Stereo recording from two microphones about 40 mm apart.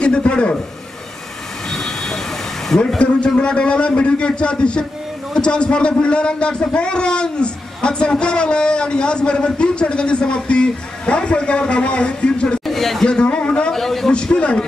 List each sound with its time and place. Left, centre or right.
0.0 s a man's voice: left
1.7 s vehicle: centre
2.7 s a man's voice: centre
3.3 s a man's voice: left
12.6 s chatter: centre
13.0 s a man's voice: left
13.7 s a man's voice: centre
14.1 s a man's voice: left